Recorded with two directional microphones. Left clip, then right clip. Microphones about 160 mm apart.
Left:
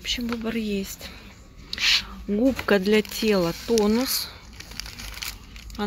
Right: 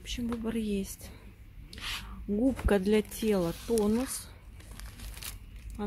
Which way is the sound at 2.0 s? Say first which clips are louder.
Left 7 dB; centre (ahead or behind).